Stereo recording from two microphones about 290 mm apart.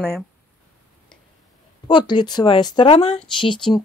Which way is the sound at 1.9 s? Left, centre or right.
Centre.